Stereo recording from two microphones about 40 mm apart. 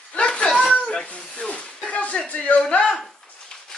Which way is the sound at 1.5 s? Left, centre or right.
Left.